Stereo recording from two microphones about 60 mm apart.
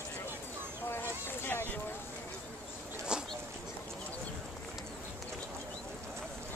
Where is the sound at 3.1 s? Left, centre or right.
Centre.